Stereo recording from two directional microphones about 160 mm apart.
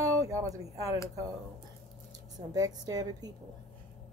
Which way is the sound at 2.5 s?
20° right (ahead or behind).